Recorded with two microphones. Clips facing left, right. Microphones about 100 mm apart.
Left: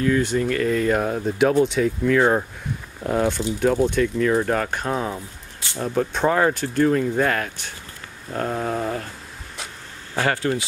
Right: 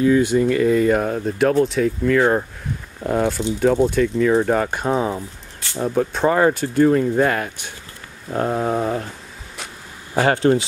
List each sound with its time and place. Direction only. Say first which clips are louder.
0.0 s speech: right 5 dB; 10° right (ahead or behind)
8.3 s speech: right 4 dB; 15° right (ahead or behind)
10.2 s speech: right 6 dB; 25° right (ahead or behind)